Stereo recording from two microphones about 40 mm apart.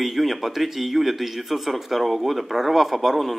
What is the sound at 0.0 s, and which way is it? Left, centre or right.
Speech, centre.